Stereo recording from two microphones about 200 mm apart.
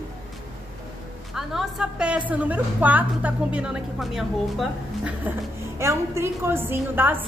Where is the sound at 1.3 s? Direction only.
Centre (ahead or behind).